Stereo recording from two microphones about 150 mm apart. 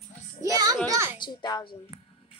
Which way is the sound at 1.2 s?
25° left (ahead or behind).